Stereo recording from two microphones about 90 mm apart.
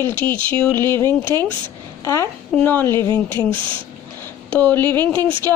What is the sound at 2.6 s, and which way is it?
Speech, 25° left (ahead or behind).